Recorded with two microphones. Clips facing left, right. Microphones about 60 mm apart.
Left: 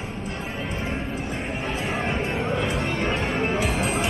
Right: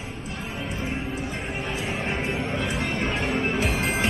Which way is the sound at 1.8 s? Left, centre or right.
Centre.